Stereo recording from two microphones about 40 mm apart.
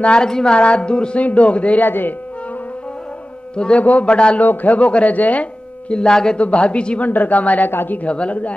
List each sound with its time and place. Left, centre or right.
0.0 s music: left
0.3 s music: centre
0.6 s music: left
1.2 s a man's voice: left
1.8 s speech: left
3.5 s music: left
4.4 s a man's voice: left
5.1 s a sound: left
5.9 s music: centre
6.3 s music: left
7.0 s a man's voice: left